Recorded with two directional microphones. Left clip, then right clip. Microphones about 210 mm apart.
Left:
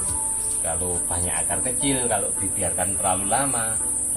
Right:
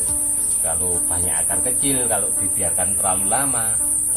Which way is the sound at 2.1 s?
10° right (ahead or behind).